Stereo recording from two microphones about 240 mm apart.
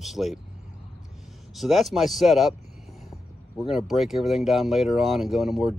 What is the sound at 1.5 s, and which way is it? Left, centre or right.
Speech, centre.